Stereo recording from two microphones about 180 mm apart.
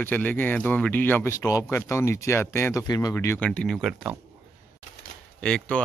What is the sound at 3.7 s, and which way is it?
Speech, 10° right (ahead or behind).